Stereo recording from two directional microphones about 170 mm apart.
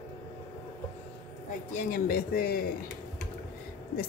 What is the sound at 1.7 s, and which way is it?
Speech, 60° left (ahead or behind).